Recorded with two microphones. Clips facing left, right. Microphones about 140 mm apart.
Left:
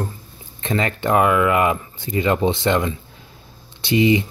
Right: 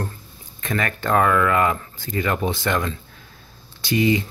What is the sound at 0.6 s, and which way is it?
Speech, 25° left (ahead or behind).